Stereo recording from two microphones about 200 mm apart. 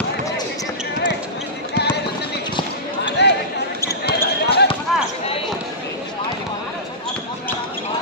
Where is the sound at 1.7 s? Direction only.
55° left (ahead or behind).